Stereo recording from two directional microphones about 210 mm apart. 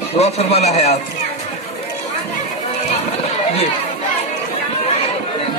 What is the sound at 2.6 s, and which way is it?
Run, 30° left (ahead or behind).